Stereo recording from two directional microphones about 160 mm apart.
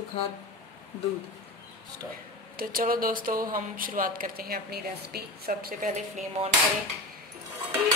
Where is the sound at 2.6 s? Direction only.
65° right (ahead or behind).